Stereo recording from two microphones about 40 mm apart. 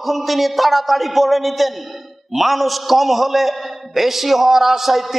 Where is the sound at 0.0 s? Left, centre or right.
Centre.